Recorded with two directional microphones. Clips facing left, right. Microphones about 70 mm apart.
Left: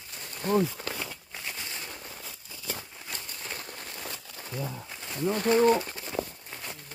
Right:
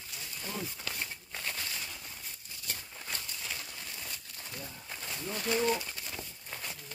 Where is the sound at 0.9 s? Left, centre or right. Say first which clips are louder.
Left 5 dB; left.